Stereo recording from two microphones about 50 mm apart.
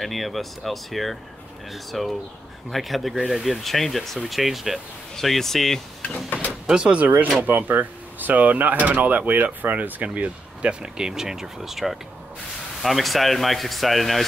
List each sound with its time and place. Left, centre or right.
0.0 s speech: centre
6.7 s speech: right
7.4 s speech: right; by 14.2 s centre